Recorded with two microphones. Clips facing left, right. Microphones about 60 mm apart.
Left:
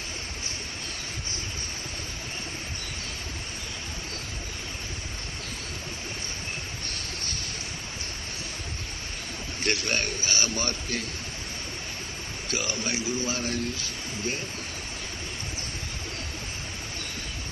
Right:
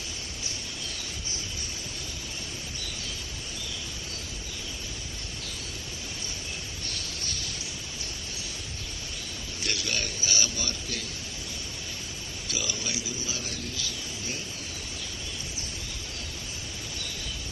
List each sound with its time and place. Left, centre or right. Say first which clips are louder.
9.6 s a man's voice: left 5 dB; left
12.4 s a man's voice: left 4 dB; left